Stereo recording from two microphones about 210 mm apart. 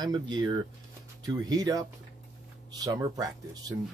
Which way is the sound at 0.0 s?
20° right (ahead or behind).